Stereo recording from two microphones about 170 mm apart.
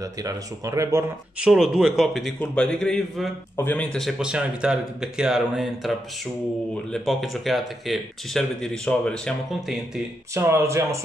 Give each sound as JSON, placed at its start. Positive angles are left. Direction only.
{"t": 0.2, "sound": "speech", "side_deg": -20}
{"t": 1.4, "sound": "a man's voice", "side_deg": 0}
{"t": 10.3, "sound": "speech", "side_deg": -15}